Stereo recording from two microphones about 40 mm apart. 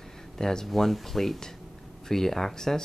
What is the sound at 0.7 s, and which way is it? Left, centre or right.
Speech, centre.